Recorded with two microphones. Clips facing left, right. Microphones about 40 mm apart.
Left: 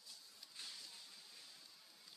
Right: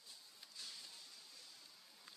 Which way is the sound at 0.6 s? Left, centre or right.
Left.